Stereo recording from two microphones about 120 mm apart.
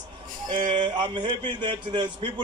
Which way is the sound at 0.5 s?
40° right (ahead or behind).